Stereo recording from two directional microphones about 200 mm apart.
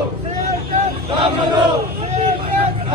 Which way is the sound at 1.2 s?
25° right (ahead or behind).